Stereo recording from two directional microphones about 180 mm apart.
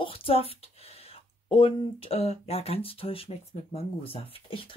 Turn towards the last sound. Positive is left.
turn(degrees=30)  # may be behind; listen again after turning